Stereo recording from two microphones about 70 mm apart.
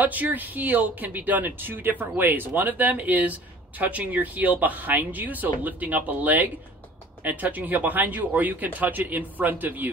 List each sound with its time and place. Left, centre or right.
0.0 s speech: right